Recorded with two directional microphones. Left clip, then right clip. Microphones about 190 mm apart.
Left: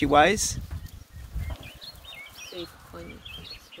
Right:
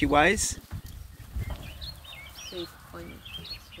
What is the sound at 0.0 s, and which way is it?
Speech, 10° left (ahead or behind).